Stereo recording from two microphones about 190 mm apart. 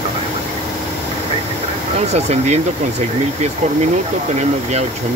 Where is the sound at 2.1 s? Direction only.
35° right (ahead or behind).